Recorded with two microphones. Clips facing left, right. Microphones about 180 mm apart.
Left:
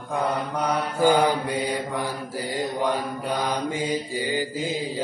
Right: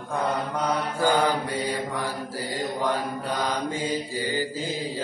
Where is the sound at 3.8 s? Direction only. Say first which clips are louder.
Left 2 dB; 15° left (ahead or behind).